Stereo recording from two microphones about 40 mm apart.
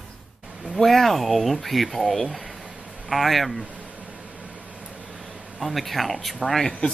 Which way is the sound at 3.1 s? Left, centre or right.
Centre.